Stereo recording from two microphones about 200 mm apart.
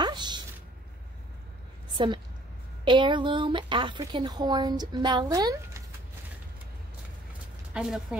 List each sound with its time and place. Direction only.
0.0 s a sound: 20° right (ahead or behind)
2.0 s speech: 25° right (ahead or behind)
7.7 s a woman's voice: 5° right (ahead or behind)